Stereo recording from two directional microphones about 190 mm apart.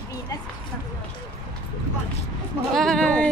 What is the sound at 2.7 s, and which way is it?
Speech, centre (ahead or behind).